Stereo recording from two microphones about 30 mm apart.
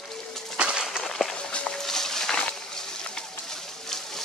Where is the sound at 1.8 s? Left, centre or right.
Centre.